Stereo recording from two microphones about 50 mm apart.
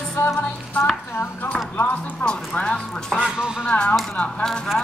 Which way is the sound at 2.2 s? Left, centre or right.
Centre.